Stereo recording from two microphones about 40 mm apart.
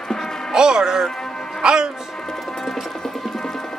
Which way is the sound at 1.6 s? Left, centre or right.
Centre.